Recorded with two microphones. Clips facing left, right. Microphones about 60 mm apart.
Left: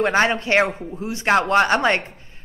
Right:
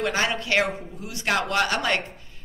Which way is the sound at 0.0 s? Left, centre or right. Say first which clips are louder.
Left 7 dB; left.